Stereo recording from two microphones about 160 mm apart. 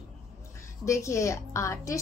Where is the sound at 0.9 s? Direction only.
20° left (ahead or behind).